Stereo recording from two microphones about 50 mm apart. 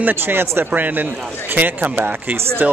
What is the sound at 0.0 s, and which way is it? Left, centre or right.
Speech, right.